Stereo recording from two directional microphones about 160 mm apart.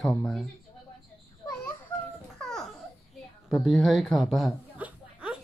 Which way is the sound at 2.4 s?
Centre (ahead or behind).